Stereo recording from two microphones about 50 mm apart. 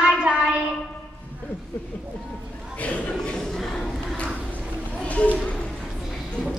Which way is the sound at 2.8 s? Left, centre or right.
Left.